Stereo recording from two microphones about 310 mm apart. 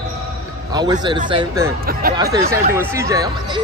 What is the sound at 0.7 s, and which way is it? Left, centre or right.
A man's voice, centre.